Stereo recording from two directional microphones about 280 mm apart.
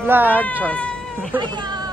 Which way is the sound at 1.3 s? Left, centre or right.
Centre.